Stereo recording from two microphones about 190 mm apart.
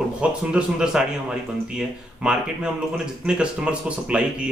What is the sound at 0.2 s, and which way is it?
Speech, 5° right (ahead or behind).